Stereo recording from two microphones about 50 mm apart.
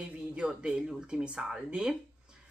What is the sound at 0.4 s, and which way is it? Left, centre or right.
A woman's voice, right.